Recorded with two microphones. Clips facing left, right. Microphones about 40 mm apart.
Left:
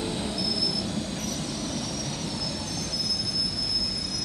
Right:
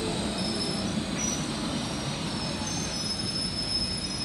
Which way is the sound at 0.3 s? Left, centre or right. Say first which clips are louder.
Left 1 dB; right.